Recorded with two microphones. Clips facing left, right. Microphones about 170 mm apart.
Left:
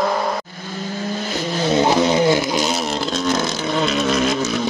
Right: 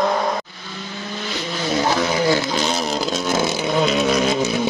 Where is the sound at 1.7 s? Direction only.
20° left (ahead or behind).